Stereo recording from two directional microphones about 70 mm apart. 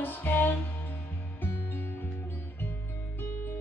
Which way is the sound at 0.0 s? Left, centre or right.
Left.